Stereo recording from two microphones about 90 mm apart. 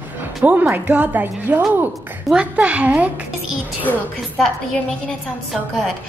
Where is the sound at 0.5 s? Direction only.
20° right (ahead or behind).